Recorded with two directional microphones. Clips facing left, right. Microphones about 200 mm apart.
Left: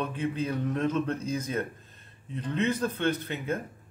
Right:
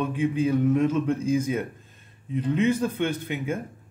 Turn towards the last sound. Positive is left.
turn(degrees=-10)  # may be behind; listen again after turning